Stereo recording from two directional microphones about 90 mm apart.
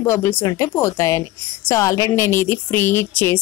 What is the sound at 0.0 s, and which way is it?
A woman's voice, 30° left (ahead or behind).